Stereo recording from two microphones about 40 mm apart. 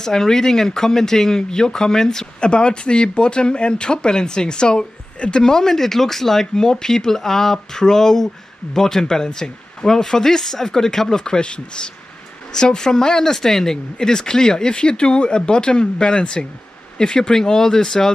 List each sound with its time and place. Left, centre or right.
0.0 s speech: centre
2.4 s speech: left